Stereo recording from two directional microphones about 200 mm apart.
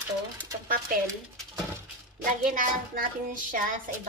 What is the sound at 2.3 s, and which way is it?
A woman's voice, 45° right (ahead or behind).